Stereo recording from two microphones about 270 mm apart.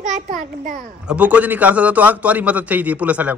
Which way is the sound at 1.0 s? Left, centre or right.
Centre.